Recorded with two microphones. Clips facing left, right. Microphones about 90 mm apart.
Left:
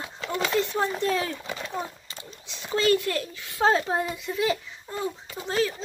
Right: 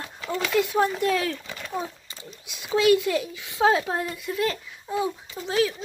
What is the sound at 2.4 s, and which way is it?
A child's voice, 10° right (ahead or behind).